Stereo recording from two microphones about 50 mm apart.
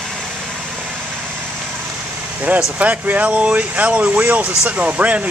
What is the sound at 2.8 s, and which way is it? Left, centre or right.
Speech, right.